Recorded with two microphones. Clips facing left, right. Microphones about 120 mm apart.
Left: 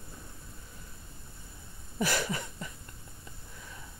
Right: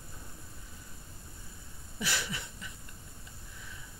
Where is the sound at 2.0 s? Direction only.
45° left (ahead or behind).